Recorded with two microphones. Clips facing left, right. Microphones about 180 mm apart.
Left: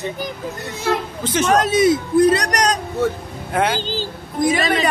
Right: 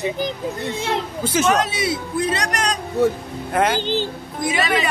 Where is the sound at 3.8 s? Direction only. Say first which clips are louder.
Right 3 dB; 20° right (ahead or behind).